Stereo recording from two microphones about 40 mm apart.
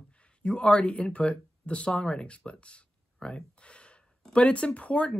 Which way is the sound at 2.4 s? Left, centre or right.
Left.